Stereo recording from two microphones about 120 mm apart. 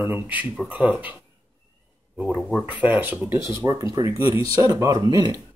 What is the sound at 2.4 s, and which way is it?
Speech, 10° left (ahead or behind).